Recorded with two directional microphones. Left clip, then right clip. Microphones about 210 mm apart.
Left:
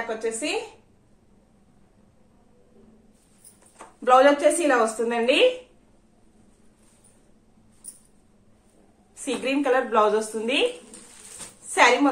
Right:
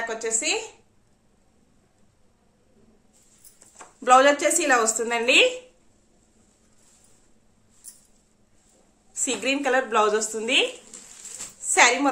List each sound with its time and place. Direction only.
0.2 s a woman's voice: 55° right (ahead or behind)
4.0 s a woman's voice: 55° right (ahead or behind)
9.1 s speech: 55° right (ahead or behind)
11.7 s speech: 50° right (ahead or behind)